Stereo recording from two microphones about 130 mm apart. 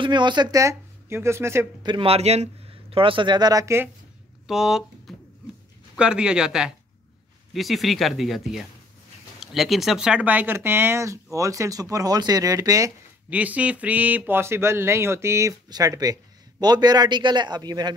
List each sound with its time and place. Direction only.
0.0 s speech: 35° right (ahead or behind); by 1.7 s 20° right (ahead or behind)
1.8 s speech: 40° right (ahead or behind); by 3.9 s 20° right (ahead or behind)
4.5 s speech: 5° right (ahead or behind); by 12.9 s 25° right (ahead or behind)
13.3 s speech: 10° right (ahead or behind); by 17.9 s 30° right (ahead or behind)